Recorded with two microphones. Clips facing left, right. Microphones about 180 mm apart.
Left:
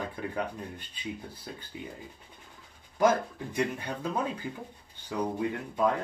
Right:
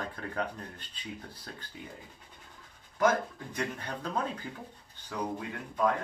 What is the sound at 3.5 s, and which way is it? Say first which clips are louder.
Speech: left 6 dB; 10° left (ahead or behind).